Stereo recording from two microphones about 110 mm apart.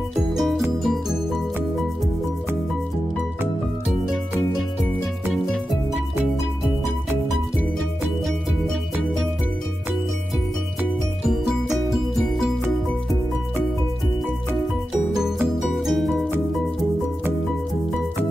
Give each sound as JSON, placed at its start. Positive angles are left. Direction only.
{"t": 0.3, "sound": "music", "side_deg": 0}
{"t": 15.6, "sound": "music", "side_deg": 0}